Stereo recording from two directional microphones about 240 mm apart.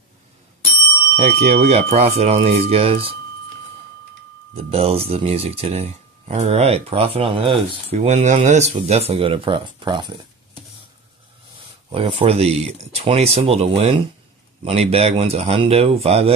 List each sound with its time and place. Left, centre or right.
1.1 s speech: right
4.6 s speech: right
11.9 s speech: right